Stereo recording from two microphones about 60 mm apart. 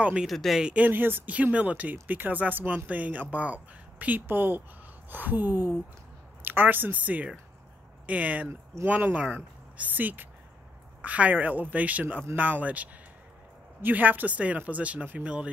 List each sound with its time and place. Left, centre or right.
0.0 s speech: centre
0.3 s speech: centre
0.6 s speech: centre
0.8 s a woman's voice: right